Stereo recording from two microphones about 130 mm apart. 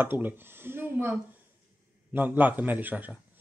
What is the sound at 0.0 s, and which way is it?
Speech, 15° right (ahead or behind).